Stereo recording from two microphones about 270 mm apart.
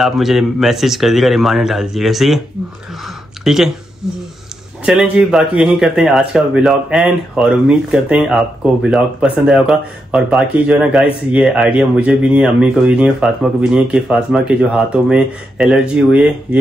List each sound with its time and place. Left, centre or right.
0.0 s speech: centre
3.4 s speech: centre